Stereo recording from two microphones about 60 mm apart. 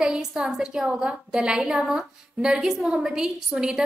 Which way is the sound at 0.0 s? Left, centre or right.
Centre.